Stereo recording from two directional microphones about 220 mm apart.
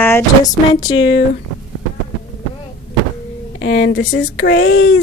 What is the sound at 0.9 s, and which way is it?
Speech, 55° left (ahead or behind).